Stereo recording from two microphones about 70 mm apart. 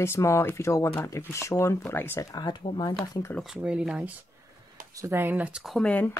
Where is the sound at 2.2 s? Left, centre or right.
Left.